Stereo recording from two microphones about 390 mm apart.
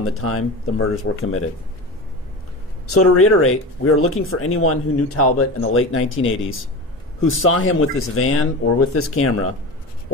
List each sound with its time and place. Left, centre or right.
0.0 s speech: left
2.9 s speech: left